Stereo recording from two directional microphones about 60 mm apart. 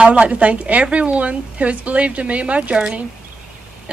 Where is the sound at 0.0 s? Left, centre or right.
Right.